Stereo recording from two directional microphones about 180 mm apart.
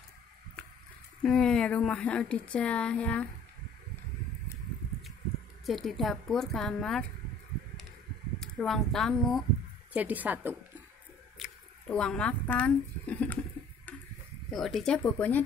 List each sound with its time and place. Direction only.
1.2 s speech: 5° left (ahead or behind)
5.7 s speech: centre (ahead or behind)
8.4 s a woman's voice: centre (ahead or behind)
11.3 s speech: centre (ahead or behind)
14.5 s speech: centre (ahead or behind)